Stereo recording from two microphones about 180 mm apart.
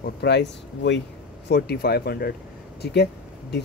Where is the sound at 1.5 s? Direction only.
65° left (ahead or behind).